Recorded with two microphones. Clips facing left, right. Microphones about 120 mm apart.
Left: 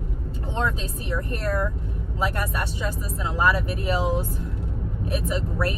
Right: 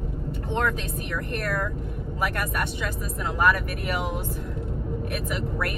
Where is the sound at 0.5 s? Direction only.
25° left (ahead or behind).